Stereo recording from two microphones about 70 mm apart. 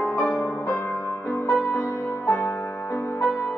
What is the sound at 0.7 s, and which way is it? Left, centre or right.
Music, centre.